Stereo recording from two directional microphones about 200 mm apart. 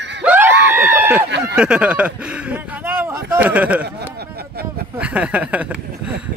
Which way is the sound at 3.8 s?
50° right (ahead or behind).